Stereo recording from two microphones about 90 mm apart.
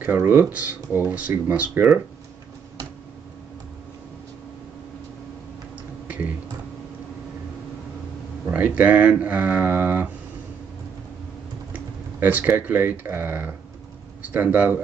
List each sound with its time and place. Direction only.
0.2 s speech: 20° right (ahead or behind)
8.5 s speech: 15° right (ahead or behind)
11.7 s speech: 20° right (ahead or behind)